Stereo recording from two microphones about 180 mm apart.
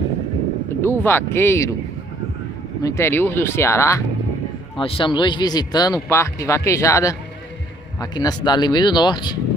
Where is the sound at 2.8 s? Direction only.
15° left (ahead or behind).